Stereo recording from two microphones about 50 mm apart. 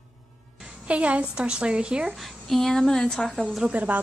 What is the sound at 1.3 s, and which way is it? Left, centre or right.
Speech, right.